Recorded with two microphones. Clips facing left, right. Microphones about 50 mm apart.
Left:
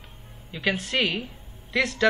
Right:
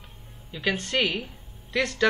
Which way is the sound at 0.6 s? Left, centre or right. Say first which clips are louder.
Even; centre.